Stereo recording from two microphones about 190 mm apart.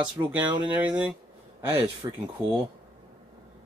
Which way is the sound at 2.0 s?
20° right (ahead or behind).